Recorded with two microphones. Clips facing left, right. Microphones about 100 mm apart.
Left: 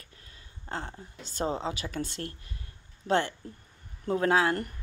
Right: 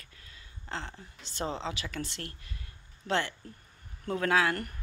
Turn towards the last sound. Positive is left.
turn(degrees=30)  # may be behind; listen again after turning